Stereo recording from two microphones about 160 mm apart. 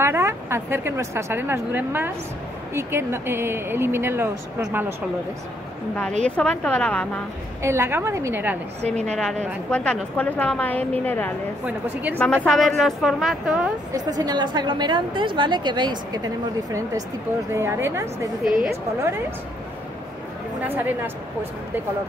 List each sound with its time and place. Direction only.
0.0 s speech: 15° right (ahead or behind)
6.2 s a woman's voice: 5° left (ahead or behind)
7.6 s speech: 15° right (ahead or behind)
8.8 s a woman's voice: 45° right (ahead or behind)
9.1 s a woman's voice: 5° left (ahead or behind)
11.6 s speech: 10° right (ahead or behind)
12.4 s a woman's voice: centre (ahead or behind)
13.9 s a woman's voice: 25° right (ahead or behind)
17.6 s speech: 15° right (ahead or behind)
20.6 s speech: 15° right (ahead or behind)